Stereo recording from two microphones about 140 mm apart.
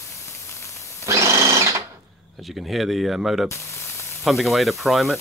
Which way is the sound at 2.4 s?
Centre (ahead or behind).